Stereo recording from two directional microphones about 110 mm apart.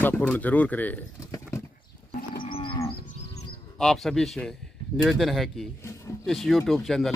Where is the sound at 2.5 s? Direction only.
50° left (ahead or behind).